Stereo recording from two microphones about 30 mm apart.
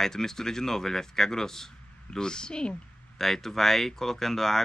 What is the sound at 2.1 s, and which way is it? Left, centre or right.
Speech, left.